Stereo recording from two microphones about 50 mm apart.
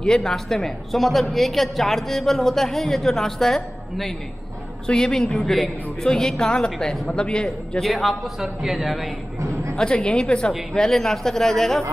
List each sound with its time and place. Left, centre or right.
0.0 s a woman's voice: centre
7.8 s a woman's voice: centre
9.8 s a woman's voice: centre